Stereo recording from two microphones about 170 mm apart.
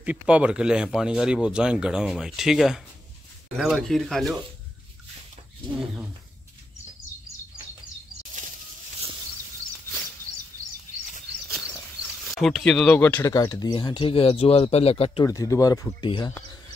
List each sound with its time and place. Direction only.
0.0 s speech: 10° right (ahead or behind)
12.0 s speech: centre (ahead or behind)
13.2 s speech: 20° left (ahead or behind)
15.2 s speech: 20° left (ahead or behind)